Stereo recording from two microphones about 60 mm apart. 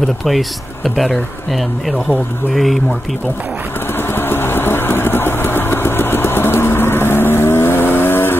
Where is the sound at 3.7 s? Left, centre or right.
Left.